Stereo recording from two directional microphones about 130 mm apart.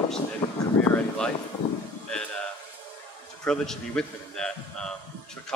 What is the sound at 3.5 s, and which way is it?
Speech, 5° left (ahead or behind).